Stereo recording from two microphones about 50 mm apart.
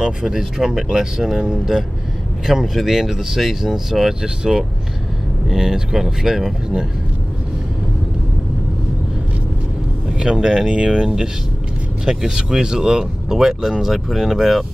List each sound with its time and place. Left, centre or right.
0.0 s speech: centre
2.4 s speech: centre
10.1 s speech: centre